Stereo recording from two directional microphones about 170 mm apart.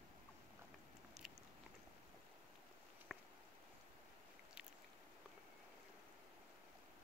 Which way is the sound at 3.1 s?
Centre (ahead or behind).